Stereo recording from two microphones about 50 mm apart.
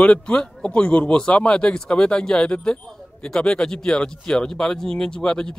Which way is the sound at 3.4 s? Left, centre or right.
Centre.